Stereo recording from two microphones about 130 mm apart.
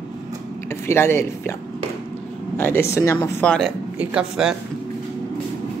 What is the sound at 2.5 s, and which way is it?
Speech, 20° left (ahead or behind).